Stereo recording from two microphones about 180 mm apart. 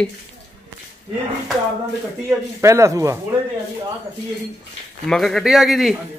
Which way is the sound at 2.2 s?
15° right (ahead or behind).